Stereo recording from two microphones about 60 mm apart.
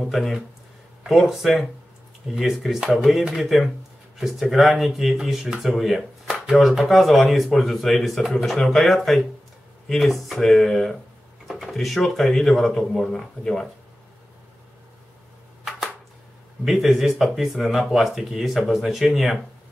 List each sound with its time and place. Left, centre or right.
0.0 s speech: centre
16.6 s speech: centre